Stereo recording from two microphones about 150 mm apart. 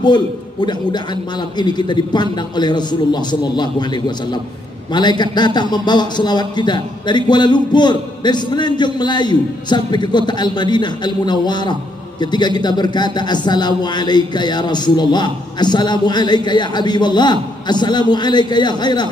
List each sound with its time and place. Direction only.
0.0 s speech: 30° left (ahead or behind)